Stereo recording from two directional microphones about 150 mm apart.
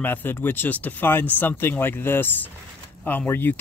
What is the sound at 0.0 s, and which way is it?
Speech, 15° left (ahead or behind).